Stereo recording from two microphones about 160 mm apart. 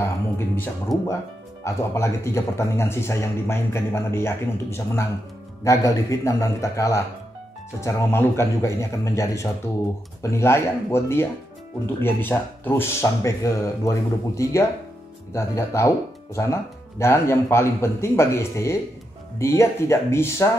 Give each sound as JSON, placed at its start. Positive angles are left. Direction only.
{"t": 0.0, "sound": "a man's voice", "side_deg": 15}
{"t": 17.0, "sound": "speech", "side_deg": 15}